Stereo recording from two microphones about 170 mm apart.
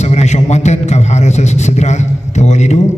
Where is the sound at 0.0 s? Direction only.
40° left (ahead or behind).